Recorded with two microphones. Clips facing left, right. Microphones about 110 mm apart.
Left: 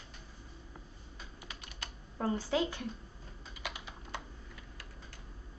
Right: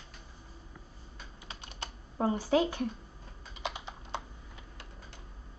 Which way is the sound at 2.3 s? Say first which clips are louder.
Right 4 dB; 15° right (ahead or behind).